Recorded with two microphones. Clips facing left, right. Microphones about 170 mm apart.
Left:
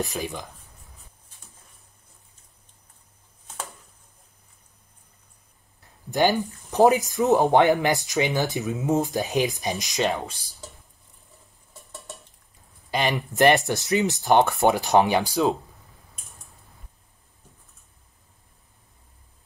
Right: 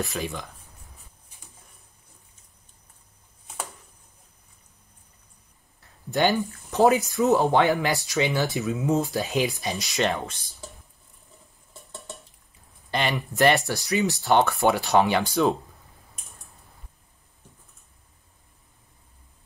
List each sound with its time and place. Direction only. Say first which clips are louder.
0.0 s speech: left 1 dB; 15° left (ahead or behind)
6.0 s speech: left 1 dB; 15° left (ahead or behind)
11.8 s stir: right 1 dB; centre (ahead or behind)
12.9 s speech: left 2 dB; 15° left (ahead or behind)